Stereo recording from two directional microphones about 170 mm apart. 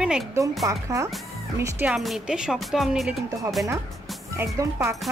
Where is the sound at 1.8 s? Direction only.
Centre (ahead or behind).